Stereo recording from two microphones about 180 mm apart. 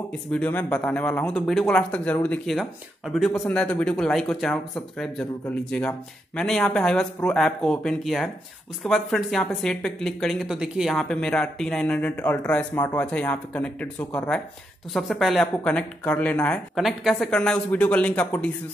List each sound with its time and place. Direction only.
0.3 s speech: 10° left (ahead or behind)